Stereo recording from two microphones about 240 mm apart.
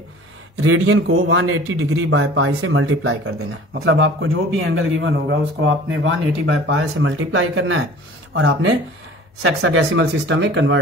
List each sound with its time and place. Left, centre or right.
0.6 s speech: right